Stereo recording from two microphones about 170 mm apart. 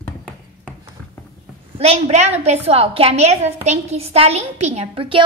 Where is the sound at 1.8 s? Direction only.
40° right (ahead or behind).